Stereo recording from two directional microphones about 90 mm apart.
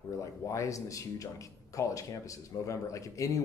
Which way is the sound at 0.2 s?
35° left (ahead or behind).